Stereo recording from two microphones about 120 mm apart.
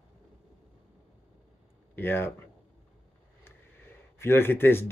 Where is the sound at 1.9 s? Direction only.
15° left (ahead or behind).